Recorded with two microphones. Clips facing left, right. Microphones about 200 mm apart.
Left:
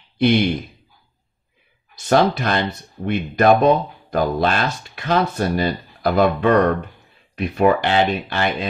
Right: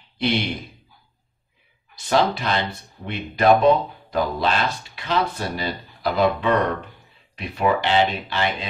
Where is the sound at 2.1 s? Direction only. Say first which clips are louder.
Left 4 dB; 50° left (ahead or behind).